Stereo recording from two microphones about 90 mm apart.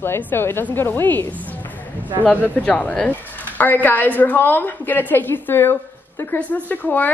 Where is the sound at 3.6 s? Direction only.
20° left (ahead or behind).